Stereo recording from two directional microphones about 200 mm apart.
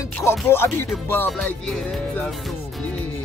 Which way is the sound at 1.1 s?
5° left (ahead or behind).